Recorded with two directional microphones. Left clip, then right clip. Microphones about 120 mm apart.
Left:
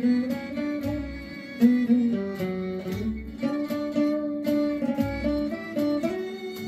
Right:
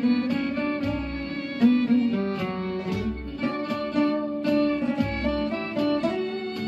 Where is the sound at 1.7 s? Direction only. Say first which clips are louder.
Right 1 dB; 20° right (ahead or behind).